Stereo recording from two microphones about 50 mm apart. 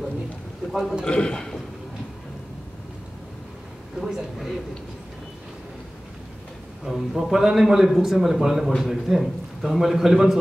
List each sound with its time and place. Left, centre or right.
0.7 s a man's voice: centre
1.0 s a man's voice: centre
4.0 s speech: centre
6.8 s a man's voice: centre